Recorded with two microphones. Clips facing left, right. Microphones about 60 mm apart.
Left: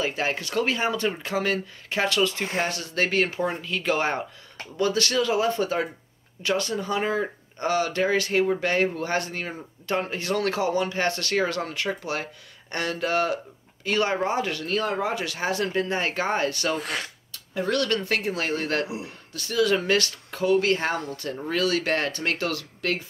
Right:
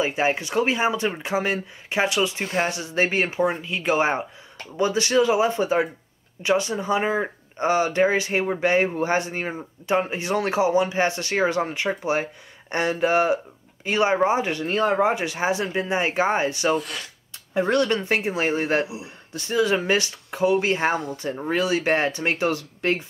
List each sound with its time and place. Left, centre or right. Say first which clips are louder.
0.0 s speech: right 4 dB; centre
16.8 s speech: left 4 dB; left
17.3 s speech: right 5 dB; right